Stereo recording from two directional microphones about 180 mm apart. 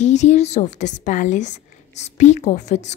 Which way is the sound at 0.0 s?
40° left (ahead or behind).